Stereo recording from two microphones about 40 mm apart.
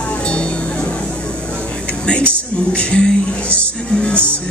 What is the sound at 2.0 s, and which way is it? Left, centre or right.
Speech, left.